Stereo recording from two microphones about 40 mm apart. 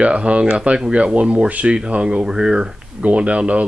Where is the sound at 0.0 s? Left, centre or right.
Right.